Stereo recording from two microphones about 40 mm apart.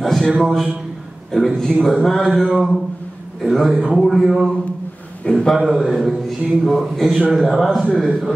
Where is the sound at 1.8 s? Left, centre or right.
Centre.